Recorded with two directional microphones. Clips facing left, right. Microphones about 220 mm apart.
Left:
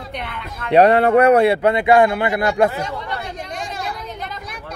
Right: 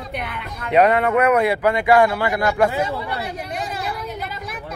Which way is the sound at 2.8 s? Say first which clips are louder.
Right 2 dB; 5° right (ahead or behind).